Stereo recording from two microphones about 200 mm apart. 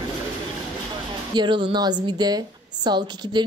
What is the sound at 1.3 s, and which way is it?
A woman's voice, 25° right (ahead or behind).